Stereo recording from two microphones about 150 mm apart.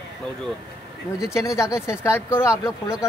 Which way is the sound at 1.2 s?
20° left (ahead or behind).